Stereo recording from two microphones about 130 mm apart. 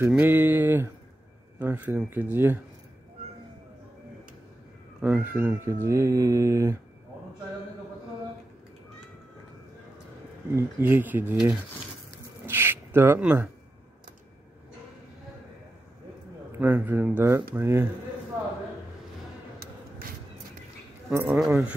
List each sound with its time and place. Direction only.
0.1 s speech: 15° right (ahead or behind)
5.0 s speech: 15° right (ahead or behind)
10.5 s speech: 15° right (ahead or behind)
16.5 s speech: 15° right (ahead or behind)
21.1 s speech: 20° right (ahead or behind)